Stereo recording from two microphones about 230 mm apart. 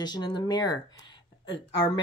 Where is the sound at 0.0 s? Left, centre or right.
Centre.